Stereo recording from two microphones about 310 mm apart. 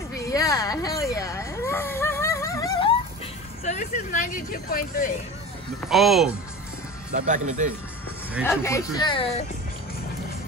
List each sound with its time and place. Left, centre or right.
0.1 s a sound: centre
3.6 s speech: left
5.9 s speech: centre
7.1 s speech: right
8.5 s speech: centre